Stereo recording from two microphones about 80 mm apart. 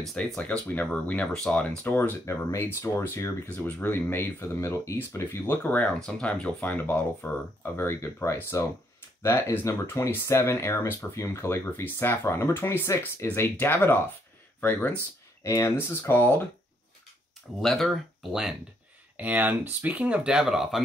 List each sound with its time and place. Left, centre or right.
0.0 s speech: centre
2.2 s speech: left
6.0 s speech: centre
6.6 s speech: left
15.4 s speech: left
17.6 s speech: centre
19.1 s speech: right